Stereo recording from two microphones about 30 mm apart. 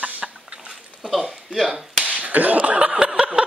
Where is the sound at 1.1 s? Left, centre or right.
Centre.